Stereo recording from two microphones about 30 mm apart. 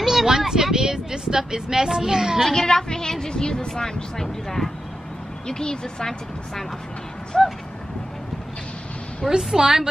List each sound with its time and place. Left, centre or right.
0.0 s speech: centre
2.4 s a child's voice: centre
2.7 s speech: left
5.5 s speech: left
7.3 s a child's voice: centre
9.4 s speech: centre